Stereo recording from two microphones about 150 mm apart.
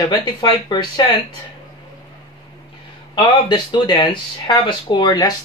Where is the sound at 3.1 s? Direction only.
30° left (ahead or behind).